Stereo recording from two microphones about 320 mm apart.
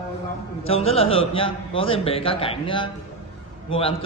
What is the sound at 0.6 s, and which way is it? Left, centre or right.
A man's voice, centre.